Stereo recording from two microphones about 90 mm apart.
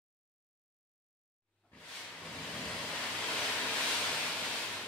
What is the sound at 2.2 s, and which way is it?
Vehicle, 10° left (ahead or behind).